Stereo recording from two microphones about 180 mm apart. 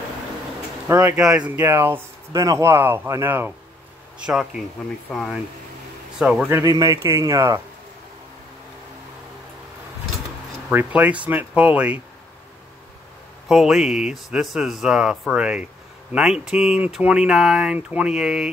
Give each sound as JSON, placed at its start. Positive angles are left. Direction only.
{"t": 0.8, "sound": "speech", "side_deg": -15}
{"t": 5.1, "sound": "speech", "side_deg": 0}
{"t": 6.6, "sound": "speech", "side_deg": -20}
{"t": 10.7, "sound": "speech", "side_deg": -10}
{"t": 13.5, "sound": "speech", "side_deg": 0}